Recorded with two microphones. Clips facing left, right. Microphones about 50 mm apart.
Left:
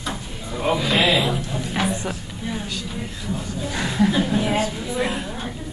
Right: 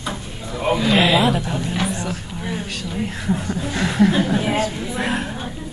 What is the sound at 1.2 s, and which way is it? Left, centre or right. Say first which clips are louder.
Speech: right 5 dB; right.